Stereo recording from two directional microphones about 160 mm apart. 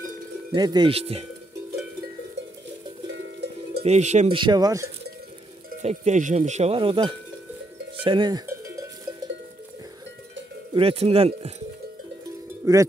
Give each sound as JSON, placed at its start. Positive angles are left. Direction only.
{"t": 0.6, "sound": "speech", "side_deg": -25}
{"t": 3.8, "sound": "speech", "side_deg": -45}
{"t": 4.4, "sound": "speech", "side_deg": -25}
{"t": 5.8, "sound": "speech", "side_deg": -45}
{"t": 8.5, "sound": "cowbell", "side_deg": -20}
{"t": 10.7, "sound": "speech", "side_deg": -35}
{"t": 12.6, "sound": "speech", "side_deg": -20}